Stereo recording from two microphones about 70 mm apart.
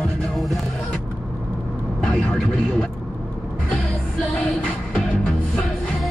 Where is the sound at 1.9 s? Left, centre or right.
Centre.